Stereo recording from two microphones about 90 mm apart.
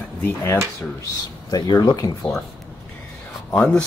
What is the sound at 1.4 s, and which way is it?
Speech, 50° left (ahead or behind).